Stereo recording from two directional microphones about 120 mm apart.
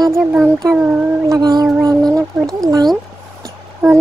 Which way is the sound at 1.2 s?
35° right (ahead or behind).